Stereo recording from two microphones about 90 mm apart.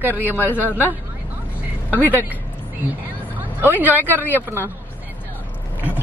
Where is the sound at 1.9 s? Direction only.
20° left (ahead or behind).